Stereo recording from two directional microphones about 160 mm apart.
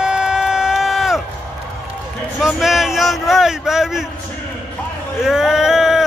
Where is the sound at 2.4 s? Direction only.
Centre (ahead or behind).